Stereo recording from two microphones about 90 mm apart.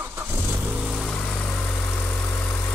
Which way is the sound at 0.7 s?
5° right (ahead or behind).